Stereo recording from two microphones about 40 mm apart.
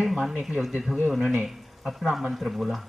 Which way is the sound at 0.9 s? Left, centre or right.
Centre.